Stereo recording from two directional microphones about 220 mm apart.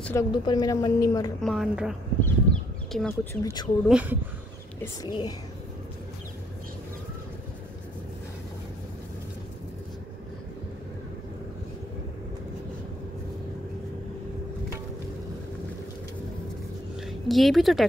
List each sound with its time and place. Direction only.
0.0 s a woman's voice: 15° left (ahead or behind)
1.4 s a woman's voice: 5° right (ahead or behind)
2.2 s a sound: 5° left (ahead or behind)
3.4 s a woman's voice: 15° left (ahead or behind)
3.9 s speech: 10° right (ahead or behind)
5.0 s a woman's voice: 20° left (ahead or behind)
17.0 s speech: centre (ahead or behind)